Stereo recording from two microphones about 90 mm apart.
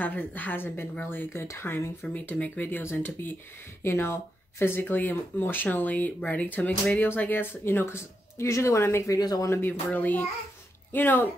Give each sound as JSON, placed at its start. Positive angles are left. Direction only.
{"t": 0.0, "sound": "speech", "side_deg": 20}
{"t": 2.1, "sound": "speech", "side_deg": 15}
{"t": 9.5, "sound": "speech", "side_deg": 25}